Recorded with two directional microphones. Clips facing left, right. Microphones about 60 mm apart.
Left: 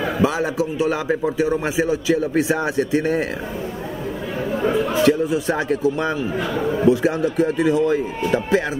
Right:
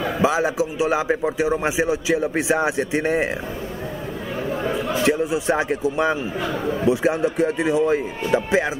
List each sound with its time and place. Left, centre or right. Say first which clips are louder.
0.2 s a man's voice: right 1 dB; centre
5.0 s a man's voice: left 1 dB; centre